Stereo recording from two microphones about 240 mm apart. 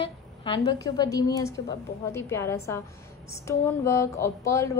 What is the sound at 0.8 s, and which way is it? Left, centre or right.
A woman's voice, centre.